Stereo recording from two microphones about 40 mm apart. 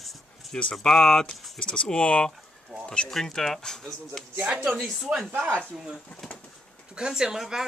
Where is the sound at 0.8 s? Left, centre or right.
Centre.